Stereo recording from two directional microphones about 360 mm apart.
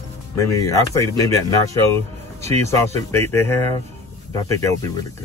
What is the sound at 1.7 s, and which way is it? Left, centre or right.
Speech, centre.